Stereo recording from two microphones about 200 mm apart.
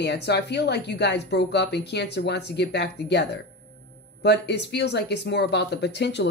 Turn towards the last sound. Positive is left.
turn(degrees=60)  # may be behind; listen again after turning